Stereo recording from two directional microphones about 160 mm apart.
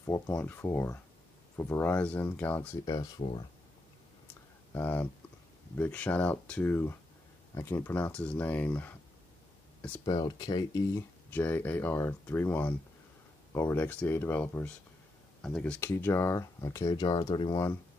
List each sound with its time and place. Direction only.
0.0 s speech: 15° left (ahead or behind)
3.2 s speech: 35° left (ahead or behind)
4.7 s speech: 10° left (ahead or behind)
9.8 s a sound: 10° left (ahead or behind)
10.0 s speech: 25° left (ahead or behind)
11.2 s speech: 10° left (ahead or behind)